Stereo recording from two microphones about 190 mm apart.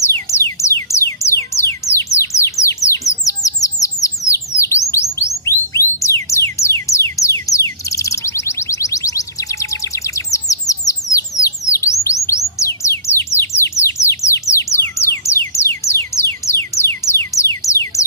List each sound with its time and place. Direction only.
0.0 s music: 15° left (ahead or behind)
3.1 s bird: 15° left (ahead or behind)
5.4 s music: 15° left (ahead or behind)
11.1 s bird: 15° left (ahead or behind)
12.3 s music: 15° left (ahead or behind)